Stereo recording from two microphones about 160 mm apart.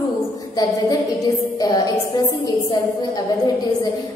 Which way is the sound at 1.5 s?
25° left (ahead or behind).